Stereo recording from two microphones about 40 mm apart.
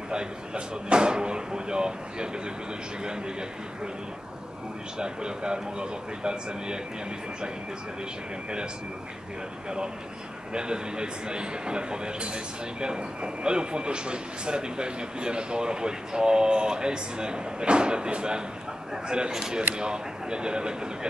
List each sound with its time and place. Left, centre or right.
0.1 s speech: right
4.9 s speech: right
10.5 s speech: right